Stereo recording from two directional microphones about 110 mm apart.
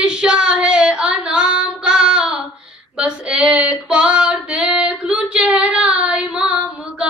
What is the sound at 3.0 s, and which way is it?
Female singing, 10° right (ahead or behind).